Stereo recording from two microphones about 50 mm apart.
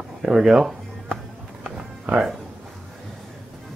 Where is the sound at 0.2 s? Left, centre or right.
Centre.